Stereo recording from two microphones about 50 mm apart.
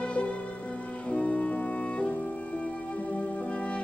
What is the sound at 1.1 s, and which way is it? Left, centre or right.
Music, centre.